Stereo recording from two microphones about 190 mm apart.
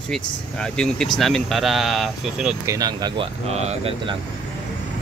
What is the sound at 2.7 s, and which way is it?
Speech, 20° right (ahead or behind).